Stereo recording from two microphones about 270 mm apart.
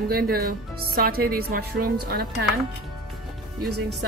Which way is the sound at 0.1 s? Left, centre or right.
Right.